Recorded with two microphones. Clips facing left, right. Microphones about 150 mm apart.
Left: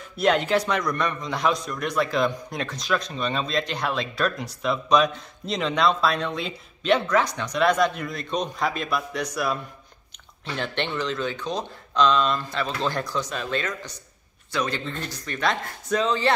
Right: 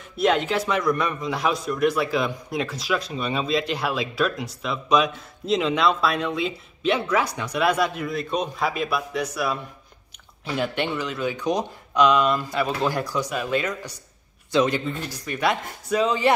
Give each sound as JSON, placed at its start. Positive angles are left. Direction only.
{"t": 0.2, "sound": "a man's voice", "side_deg": 0}
{"t": 14.9, "sound": "speech", "side_deg": -10}